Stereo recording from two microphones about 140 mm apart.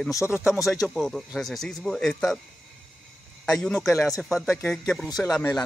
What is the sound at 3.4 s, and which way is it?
Speech, 5° left (ahead or behind).